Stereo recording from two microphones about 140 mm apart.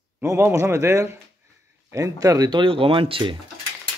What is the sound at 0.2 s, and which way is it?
Speech, 20° right (ahead or behind).